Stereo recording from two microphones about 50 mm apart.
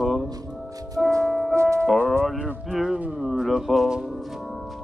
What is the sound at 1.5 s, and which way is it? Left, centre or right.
Music, right.